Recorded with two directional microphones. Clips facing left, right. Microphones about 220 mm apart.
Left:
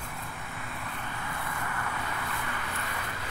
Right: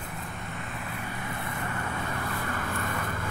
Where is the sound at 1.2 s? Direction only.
20° right (ahead or behind).